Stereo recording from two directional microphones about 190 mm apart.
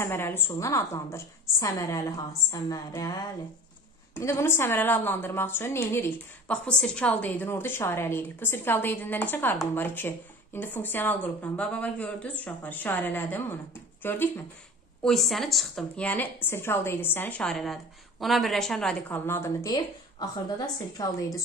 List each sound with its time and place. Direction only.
0.0 s a woman's voice: 10° left (ahead or behind)